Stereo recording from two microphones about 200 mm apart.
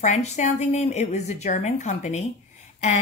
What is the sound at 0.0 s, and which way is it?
Speech, 35° left (ahead or behind).